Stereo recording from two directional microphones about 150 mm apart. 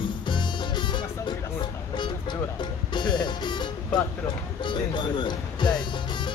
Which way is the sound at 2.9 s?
30° left (ahead or behind).